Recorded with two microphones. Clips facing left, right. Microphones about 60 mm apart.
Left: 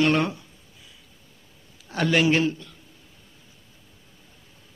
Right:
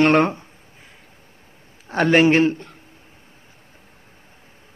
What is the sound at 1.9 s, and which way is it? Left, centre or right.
Speech, right.